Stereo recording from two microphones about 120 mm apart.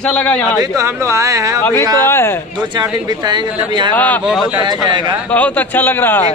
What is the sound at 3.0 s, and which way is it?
Speech, 35° right (ahead or behind).